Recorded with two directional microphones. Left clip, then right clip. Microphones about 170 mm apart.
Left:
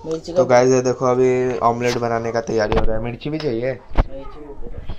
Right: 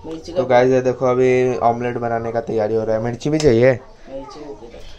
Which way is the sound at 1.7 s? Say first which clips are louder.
Even; 5° left (ahead or behind).